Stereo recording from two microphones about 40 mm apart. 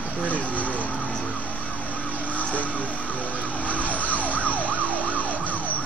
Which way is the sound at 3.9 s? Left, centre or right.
Left.